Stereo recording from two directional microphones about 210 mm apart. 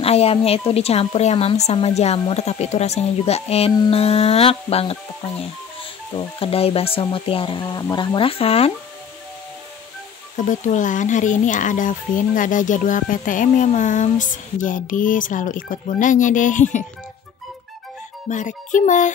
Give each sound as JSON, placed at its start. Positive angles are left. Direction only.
{"t": 0.0, "sound": "speech", "side_deg": 30}
{"t": 6.1, "sound": "speech", "side_deg": 25}
{"t": 10.3, "sound": "speech", "side_deg": 35}
{"t": 18.3, "sound": "speech", "side_deg": 35}